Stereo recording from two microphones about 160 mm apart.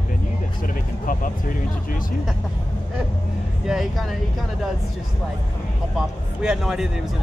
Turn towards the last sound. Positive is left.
turn(degrees=-5)  # may be behind; listen again after turning